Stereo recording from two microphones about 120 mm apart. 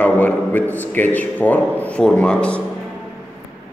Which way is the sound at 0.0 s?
15° left (ahead or behind).